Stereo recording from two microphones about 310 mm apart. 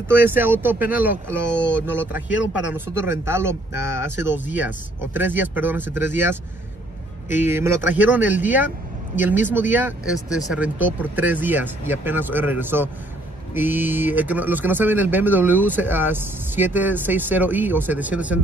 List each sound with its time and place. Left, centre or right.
0.1 s speech: centre
2.2 s speech: left
2.7 s speech: centre